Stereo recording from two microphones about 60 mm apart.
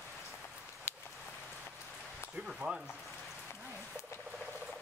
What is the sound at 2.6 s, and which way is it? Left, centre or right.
Speech, centre.